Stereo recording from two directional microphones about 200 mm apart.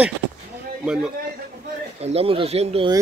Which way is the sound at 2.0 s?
30° right (ahead or behind).